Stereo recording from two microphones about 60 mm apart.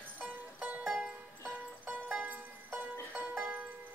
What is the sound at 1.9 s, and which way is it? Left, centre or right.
Music, right.